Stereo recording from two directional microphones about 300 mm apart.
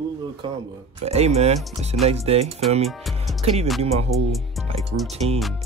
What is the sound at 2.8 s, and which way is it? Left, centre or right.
Speech, centre.